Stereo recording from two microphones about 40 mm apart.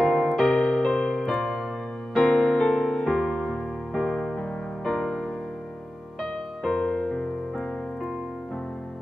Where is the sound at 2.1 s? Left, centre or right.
Centre.